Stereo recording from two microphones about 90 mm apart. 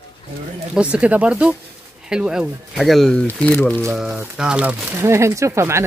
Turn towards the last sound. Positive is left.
turn(degrees=-30)  # may be behind; listen again after turning